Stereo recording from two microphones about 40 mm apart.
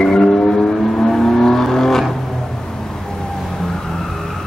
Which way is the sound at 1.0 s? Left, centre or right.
Centre.